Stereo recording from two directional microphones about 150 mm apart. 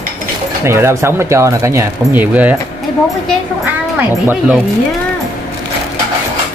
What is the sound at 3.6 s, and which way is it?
Speech, 10° right (ahead or behind).